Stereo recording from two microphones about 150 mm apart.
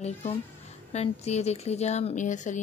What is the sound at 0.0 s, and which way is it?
A child's voice, 45° left (ahead or behind).